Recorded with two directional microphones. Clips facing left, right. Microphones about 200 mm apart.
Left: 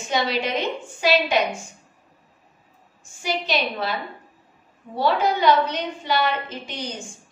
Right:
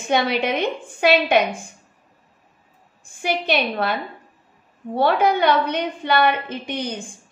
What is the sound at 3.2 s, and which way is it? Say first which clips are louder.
A woman's voice: right 3 dB; 60° right (ahead or behind).